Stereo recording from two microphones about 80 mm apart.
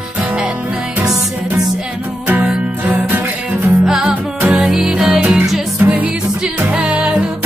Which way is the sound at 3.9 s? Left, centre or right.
Centre.